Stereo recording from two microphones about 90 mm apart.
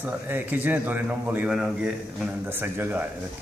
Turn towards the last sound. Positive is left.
turn(degrees=-25)  # may be behind; listen again after turning